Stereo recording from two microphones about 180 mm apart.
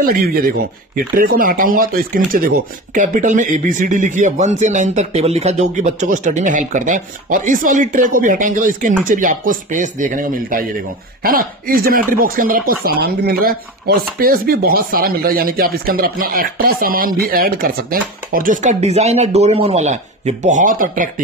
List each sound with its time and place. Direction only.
0.0 s speech: 55° right (ahead or behind)